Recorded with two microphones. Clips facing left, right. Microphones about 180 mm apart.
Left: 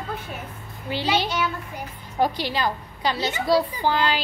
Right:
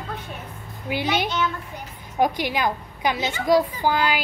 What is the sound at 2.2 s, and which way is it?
A woman's voice, 15° right (ahead or behind).